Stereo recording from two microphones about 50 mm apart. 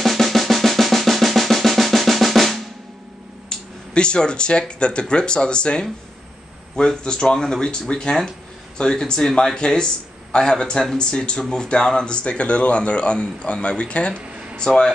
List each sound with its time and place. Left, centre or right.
0.0 s drum: centre
3.4 s speech: centre
7.0 s speech: centre